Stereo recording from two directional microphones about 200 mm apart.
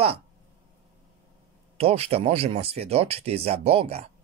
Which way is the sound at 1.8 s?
30° right (ahead or behind).